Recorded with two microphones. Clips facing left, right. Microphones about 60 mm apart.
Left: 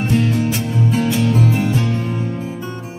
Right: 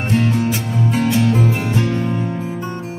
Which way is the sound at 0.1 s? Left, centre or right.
Right.